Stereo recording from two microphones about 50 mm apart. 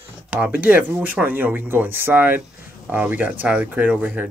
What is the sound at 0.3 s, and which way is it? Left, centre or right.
Speech, right.